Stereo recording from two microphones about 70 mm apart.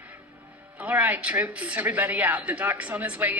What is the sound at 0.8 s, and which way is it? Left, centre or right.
Speech, right.